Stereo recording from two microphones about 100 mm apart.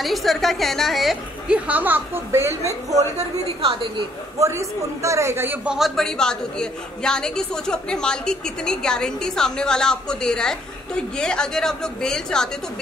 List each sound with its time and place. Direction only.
0.0 s a woman's voice: centre (ahead or behind)
1.5 s speech: 15° right (ahead or behind)
4.4 s a man's voice: 30° right (ahead or behind)
5.7 s a woman's voice: centre (ahead or behind)